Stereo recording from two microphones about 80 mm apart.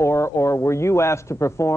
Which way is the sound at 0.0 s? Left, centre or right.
Left.